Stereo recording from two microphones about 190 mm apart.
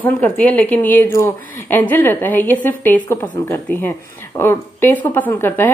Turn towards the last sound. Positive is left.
turn(degrees=10)  # may be behind; listen again after turning